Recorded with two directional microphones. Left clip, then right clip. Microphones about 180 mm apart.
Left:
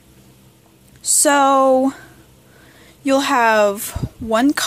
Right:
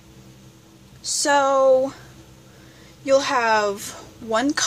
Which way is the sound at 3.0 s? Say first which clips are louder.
Left 3 dB; 50° left (ahead or behind).